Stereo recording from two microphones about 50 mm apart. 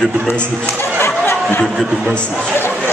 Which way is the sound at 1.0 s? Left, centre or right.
Left.